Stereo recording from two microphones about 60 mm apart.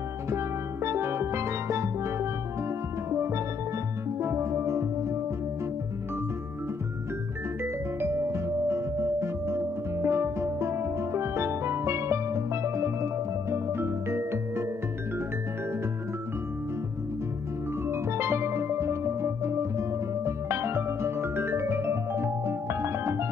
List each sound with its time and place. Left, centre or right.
0.8 s music: right
8.0 s music: right
17.8 s music: right